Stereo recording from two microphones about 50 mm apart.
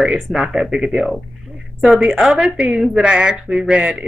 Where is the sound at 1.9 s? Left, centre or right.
Centre.